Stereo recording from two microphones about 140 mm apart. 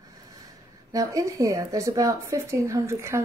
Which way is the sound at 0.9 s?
25° right (ahead or behind).